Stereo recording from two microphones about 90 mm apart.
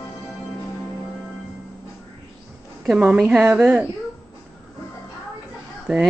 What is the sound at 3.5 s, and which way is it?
Speech, 15° right (ahead or behind).